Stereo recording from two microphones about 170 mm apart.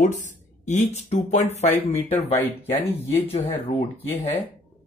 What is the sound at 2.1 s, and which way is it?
Speech, 10° left (ahead or behind).